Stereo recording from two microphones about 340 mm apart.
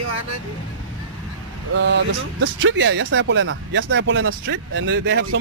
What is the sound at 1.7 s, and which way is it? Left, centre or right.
Speech, right.